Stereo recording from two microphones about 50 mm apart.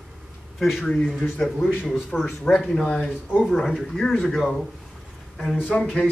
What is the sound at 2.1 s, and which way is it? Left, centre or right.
Speech, centre.